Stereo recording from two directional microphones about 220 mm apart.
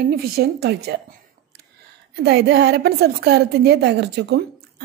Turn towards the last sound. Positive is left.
turn(degrees=-50)  # may be behind; listen again after turning